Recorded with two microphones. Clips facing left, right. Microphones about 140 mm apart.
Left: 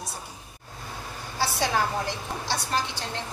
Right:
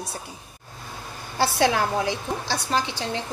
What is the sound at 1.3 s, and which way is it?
A woman's voice, 70° right (ahead or behind).